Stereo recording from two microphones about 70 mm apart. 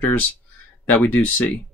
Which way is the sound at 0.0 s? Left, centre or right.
Left.